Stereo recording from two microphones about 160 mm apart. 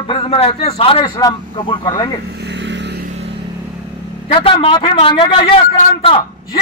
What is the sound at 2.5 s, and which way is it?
Vehicle, 90° right.